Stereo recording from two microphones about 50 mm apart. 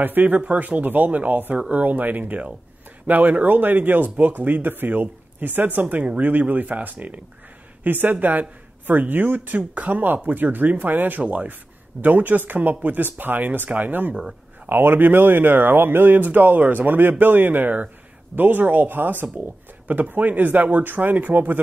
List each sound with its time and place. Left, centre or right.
0.0 s speech: right
5.8 s speech: right
16.2 s speech: right